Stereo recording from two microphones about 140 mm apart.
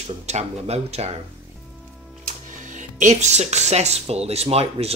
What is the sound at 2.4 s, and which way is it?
Speech, 65° right (ahead or behind).